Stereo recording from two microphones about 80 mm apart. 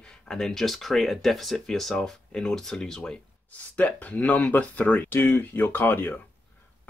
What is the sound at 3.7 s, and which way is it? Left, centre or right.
Speech, centre.